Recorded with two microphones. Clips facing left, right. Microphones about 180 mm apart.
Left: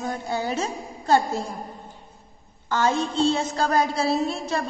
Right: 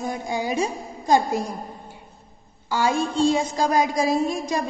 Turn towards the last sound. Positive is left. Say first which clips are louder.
# right 2 dB
turn(degrees=-15)  # may be behind; listen again after turning